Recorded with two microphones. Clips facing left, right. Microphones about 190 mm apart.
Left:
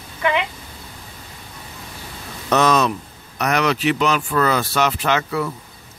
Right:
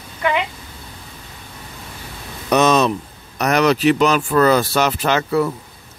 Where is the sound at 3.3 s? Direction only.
35° right (ahead or behind).